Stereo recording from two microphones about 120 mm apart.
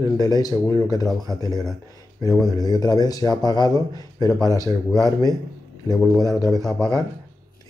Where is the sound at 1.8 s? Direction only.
35° left (ahead or behind).